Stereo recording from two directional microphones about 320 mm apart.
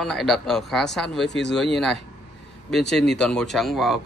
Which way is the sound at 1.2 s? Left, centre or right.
Left.